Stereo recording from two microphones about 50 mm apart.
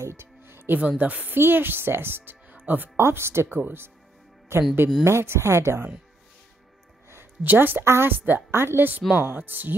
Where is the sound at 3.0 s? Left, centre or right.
Right.